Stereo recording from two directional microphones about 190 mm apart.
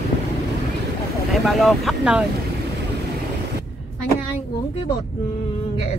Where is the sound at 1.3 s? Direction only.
Centre (ahead or behind).